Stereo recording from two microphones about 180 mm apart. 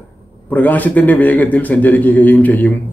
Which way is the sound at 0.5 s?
10° left (ahead or behind).